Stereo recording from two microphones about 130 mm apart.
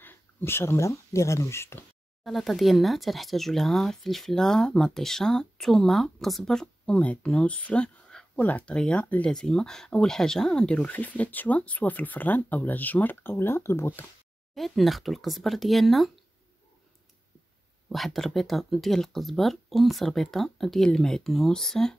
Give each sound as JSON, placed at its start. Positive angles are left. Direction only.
{"t": 0.0, "sound": "speech", "side_deg": 15}
{"t": 2.2, "sound": "speech", "side_deg": 0}
{"t": 14.5, "sound": "speech", "side_deg": 0}
{"t": 17.8, "sound": "speech", "side_deg": 0}